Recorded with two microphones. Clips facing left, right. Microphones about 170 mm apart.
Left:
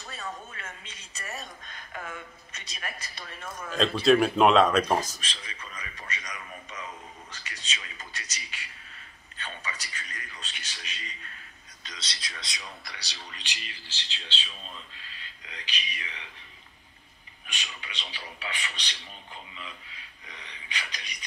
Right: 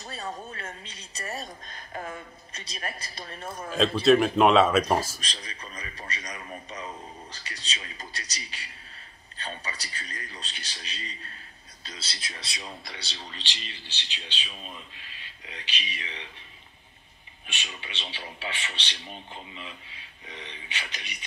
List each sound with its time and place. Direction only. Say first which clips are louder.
0.0 s a woman's voice: right 3 dB; 35° right (ahead or behind)
3.7 s speech: right 1 dB; centre (ahead or behind)
5.2 s a woman's voice: right 1 dB; 35° right (ahead or behind)
17.5 s speech: right 2 dB; 25° right (ahead or behind)